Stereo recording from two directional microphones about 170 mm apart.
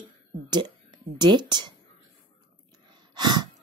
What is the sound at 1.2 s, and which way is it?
Speech, 25° right (ahead or behind).